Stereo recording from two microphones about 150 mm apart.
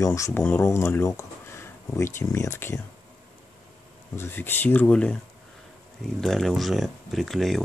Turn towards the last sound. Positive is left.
turn(degrees=0)  # may be behind; listen again after turning